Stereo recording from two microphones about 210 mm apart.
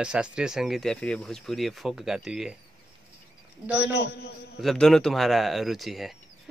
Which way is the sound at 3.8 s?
55° left (ahead or behind).